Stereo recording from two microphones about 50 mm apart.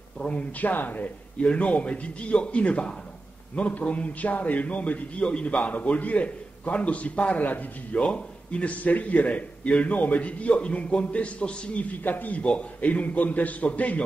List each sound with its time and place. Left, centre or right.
0.2 s speech: left
1.4 s a man's voice: left